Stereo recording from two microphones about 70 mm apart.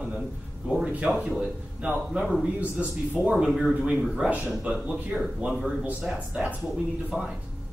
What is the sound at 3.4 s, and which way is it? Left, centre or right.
Speech, centre.